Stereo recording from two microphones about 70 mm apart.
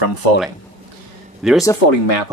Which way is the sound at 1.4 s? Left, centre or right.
Centre.